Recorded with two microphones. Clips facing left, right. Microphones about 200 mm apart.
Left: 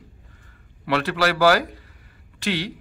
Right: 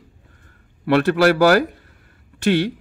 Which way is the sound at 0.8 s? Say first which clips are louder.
Right 7 dB; 50° right (ahead or behind).